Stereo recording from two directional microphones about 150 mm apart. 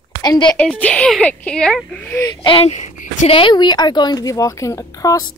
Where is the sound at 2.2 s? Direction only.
30° left (ahead or behind); by 3.3 s 55° left (ahead or behind).